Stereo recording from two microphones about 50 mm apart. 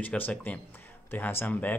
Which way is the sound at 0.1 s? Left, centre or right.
Left.